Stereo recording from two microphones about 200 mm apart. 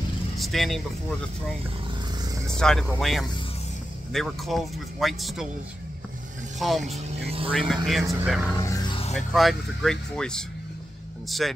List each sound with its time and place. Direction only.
0.4 s speech: centre (ahead or behind)
2.5 s speech: 5° left (ahead or behind)
6.8 s speech: 30° right (ahead or behind)
7.5 s speech: centre (ahead or behind)
8.0 s speech: 15° right (ahead or behind)
8.3 s speech: centre (ahead or behind)
8.5 s music: 20° left (ahead or behind)
9.1 s speech: centre (ahead or behind)